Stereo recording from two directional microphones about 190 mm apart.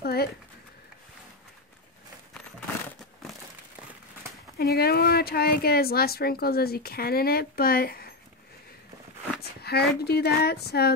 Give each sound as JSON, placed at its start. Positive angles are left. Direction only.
{"t": 0.0, "sound": "a sound", "side_deg": 55}
{"t": 4.6, "sound": "a woman's voice", "side_deg": 55}
{"t": 9.4, "sound": "speech", "side_deg": 55}